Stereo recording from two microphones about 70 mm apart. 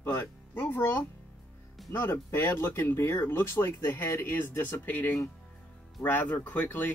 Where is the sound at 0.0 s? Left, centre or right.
Left.